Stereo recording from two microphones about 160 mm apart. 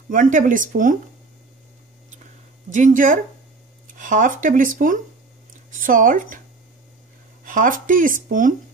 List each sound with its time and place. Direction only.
0.1 s speech: 55° right (ahead or behind)
2.7 s speech: 55° right (ahead or behind)
7.4 s speech: 55° right (ahead or behind)